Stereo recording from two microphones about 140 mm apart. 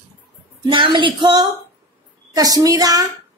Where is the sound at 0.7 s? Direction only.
35° right (ahead or behind).